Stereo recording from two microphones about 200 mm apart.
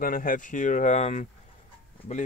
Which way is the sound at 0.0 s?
45° left (ahead or behind).